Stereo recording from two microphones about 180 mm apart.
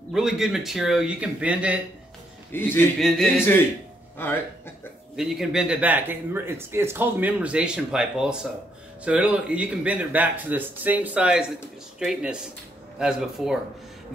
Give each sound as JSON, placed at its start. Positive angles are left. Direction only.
{"t": 0.1, "sound": "speech", "side_deg": 0}
{"t": 2.5, "sound": "a man's voice", "side_deg": 10}
{"t": 3.3, "sound": "a man's voice", "side_deg": 10}
{"t": 5.1, "sound": "speech", "side_deg": 0}